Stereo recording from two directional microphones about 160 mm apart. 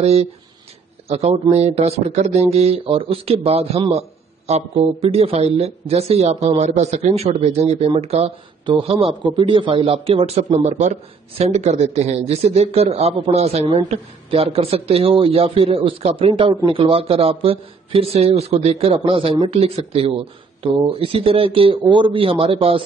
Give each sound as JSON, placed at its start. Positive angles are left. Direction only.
{"t": 0.0, "sound": "speech", "side_deg": -40}